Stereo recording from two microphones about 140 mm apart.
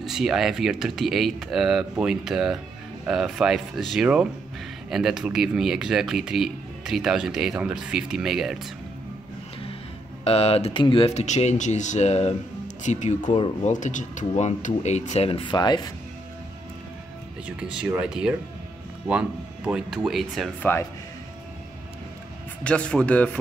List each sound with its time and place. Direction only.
0.0 s speech: centre (ahead or behind)
10.2 s speech: 45° left (ahead or behind)
11.1 s speech: 55° left (ahead or behind); by 15.9 s 30° left (ahead or behind)
17.5 s speech: 5° right (ahead or behind)
20.7 s speech: 15° left (ahead or behind)
22.6 s speech: 10° left (ahead or behind)